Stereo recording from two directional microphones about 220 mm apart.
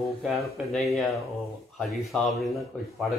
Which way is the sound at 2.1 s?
5° left (ahead or behind).